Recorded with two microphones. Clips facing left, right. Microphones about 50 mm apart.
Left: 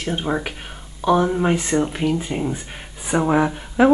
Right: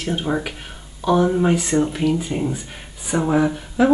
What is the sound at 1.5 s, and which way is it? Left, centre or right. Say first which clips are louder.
Speech: right 1 dB; left.